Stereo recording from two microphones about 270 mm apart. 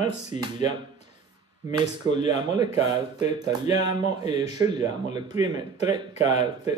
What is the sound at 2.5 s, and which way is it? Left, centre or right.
Speech, centre.